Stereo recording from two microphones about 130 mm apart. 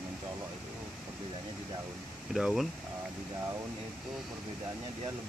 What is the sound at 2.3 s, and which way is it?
Speech, centre (ahead or behind).